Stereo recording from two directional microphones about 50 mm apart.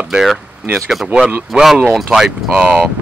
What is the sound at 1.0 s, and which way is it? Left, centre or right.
Speech, centre.